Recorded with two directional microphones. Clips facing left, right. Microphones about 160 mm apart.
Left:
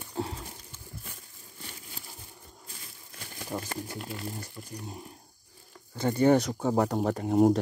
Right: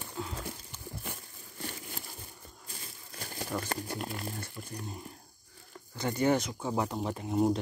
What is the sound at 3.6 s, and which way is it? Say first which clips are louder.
Speech: right 1 dB; 50° right (ahead or behind).